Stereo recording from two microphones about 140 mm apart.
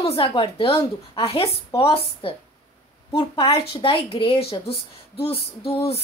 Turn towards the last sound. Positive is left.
turn(degrees=45)  # may be behind; listen again after turning